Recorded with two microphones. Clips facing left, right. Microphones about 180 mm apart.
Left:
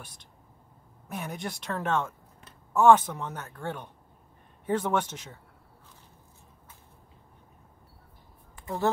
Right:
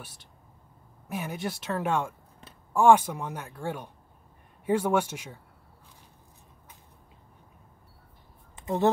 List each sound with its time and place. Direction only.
0.0 s speech: 5° right (ahead or behind)
8.5 s speech: 20° right (ahead or behind)